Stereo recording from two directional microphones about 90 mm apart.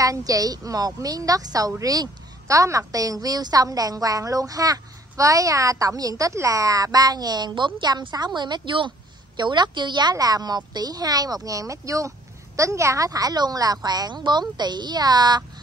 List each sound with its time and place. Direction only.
0.0 s a woman's voice: 40° right (ahead or behind)